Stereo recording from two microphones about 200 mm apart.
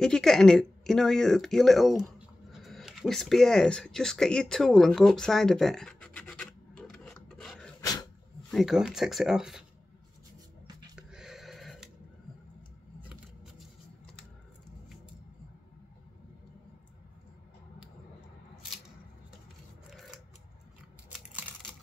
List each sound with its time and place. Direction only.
0.0 s speech: 5° left (ahead or behind)
2.5 s a sound: centre (ahead or behind)
7.8 s dog: 20° left (ahead or behind)
8.5 s speech: centre (ahead or behind)
11.0 s a sound: 5° right (ahead or behind)
19.9 s scissors: centre (ahead or behind)